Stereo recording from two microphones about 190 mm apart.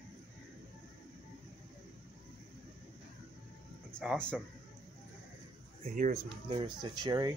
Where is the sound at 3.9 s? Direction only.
5° left (ahead or behind).